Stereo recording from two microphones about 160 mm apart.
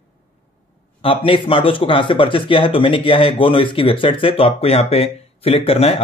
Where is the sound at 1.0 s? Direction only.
35° left (ahead or behind).